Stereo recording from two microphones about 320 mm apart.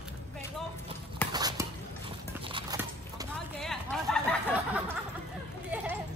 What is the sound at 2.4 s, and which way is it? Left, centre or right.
Horse, centre.